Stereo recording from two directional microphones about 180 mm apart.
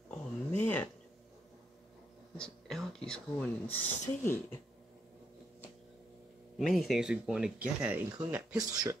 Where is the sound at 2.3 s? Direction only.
5° left (ahead or behind).